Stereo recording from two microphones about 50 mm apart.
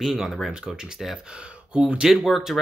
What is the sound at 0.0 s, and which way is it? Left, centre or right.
Speech, centre.